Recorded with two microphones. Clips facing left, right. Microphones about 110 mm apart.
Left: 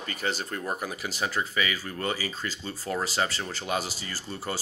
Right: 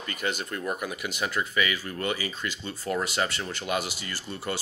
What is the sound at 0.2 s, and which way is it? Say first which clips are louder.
Speech: right 1 dB; 35° left (ahead or behind).